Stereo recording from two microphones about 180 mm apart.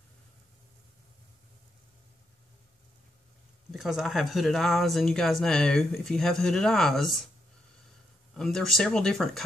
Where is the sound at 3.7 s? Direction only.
Centre (ahead or behind).